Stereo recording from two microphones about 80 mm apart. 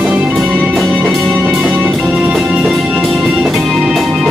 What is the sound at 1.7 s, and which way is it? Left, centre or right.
Music, centre.